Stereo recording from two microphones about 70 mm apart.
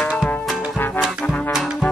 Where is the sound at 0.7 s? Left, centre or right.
Left.